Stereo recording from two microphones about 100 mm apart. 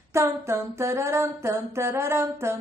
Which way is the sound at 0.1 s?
30° right (ahead or behind).